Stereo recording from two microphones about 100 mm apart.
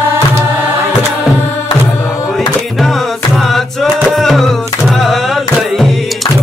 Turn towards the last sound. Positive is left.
turn(degrees=0)  # may be behind; listen again after turning